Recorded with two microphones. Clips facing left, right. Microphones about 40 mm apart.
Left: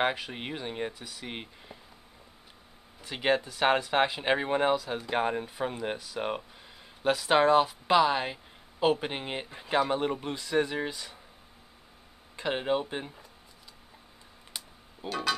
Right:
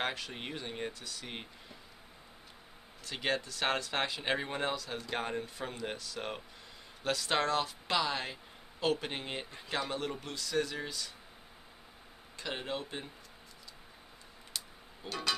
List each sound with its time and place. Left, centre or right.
0.0 s speech: centre
3.0 s speech: centre
12.4 s speech: left
14.5 s music: centre
15.0 s speech: centre